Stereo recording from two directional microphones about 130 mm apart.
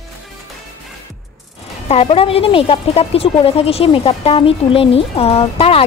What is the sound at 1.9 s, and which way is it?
Speech, 50° left (ahead or behind).